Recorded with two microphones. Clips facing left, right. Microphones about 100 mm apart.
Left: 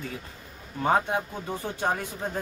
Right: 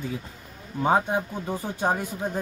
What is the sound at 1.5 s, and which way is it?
Speech, 10° right (ahead or behind).